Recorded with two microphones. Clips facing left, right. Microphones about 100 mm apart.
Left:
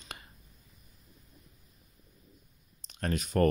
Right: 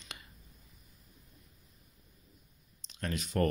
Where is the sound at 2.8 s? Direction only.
45° left (ahead or behind).